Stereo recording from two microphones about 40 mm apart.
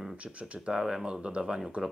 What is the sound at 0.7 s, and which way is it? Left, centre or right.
Speech, centre.